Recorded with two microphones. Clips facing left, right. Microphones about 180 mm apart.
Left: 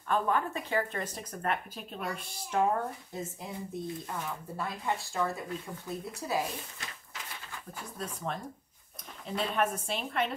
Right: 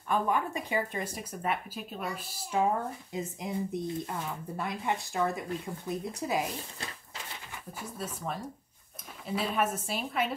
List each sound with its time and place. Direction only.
0.1 s speech: 15° right (ahead or behind)
7.5 s a woman's voice: 5° right (ahead or behind)